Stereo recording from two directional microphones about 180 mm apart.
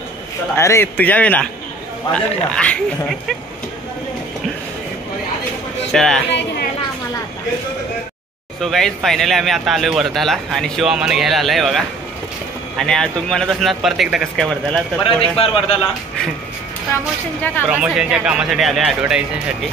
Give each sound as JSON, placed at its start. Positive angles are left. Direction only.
{"t": 0.6, "sound": "a man's voice", "side_deg": 15}
{"t": 2.5, "sound": "a man's voice", "side_deg": 5}
{"t": 5.9, "sound": "speech", "side_deg": 0}
{"t": 8.5, "sound": "speech", "side_deg": 0}
{"t": 15.0, "sound": "speech", "side_deg": 30}
{"t": 17.6, "sound": "speech", "side_deg": -5}